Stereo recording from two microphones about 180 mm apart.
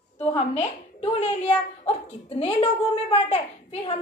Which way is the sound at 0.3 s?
35° left (ahead or behind).